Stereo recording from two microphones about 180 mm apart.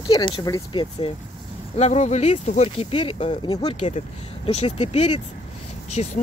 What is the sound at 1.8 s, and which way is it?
Speech, 40° left (ahead or behind).